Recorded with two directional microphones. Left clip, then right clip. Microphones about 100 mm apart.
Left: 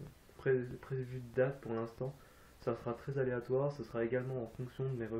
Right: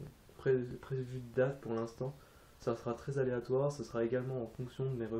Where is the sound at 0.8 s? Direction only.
10° right (ahead or behind).